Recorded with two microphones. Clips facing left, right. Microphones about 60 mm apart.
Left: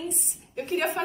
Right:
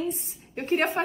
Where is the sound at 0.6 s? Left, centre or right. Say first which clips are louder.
Right 3 dB; right.